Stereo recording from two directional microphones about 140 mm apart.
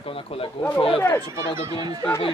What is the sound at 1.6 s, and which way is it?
Speech, 25° right (ahead or behind).